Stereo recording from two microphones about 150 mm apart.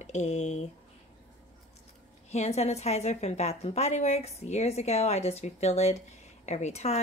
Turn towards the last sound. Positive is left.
turn(degrees=45)  # may be behind; listen again after turning